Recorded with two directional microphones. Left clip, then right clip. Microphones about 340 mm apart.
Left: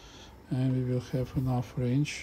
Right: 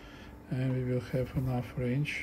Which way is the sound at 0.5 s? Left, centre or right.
Centre.